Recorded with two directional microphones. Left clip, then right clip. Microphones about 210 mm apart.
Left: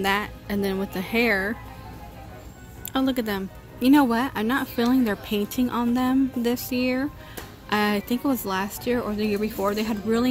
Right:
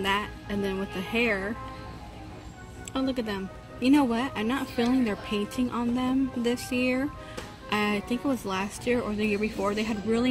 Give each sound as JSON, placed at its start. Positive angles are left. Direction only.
{"t": 0.0, "sound": "speech", "side_deg": 15}
{"t": 2.9, "sound": "speech", "side_deg": 20}